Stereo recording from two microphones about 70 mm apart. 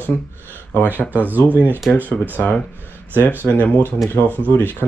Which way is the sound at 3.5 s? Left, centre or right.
Left.